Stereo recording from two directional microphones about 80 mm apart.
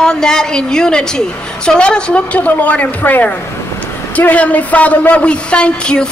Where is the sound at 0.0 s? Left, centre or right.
Centre.